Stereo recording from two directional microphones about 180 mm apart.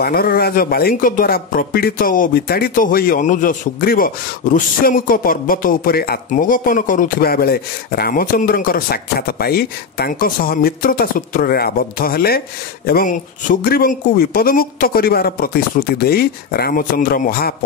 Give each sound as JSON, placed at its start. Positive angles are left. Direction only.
{"t": 0.0, "sound": "speech", "side_deg": 55}